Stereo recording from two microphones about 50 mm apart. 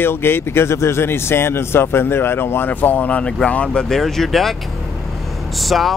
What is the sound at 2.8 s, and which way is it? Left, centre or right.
Speech, left.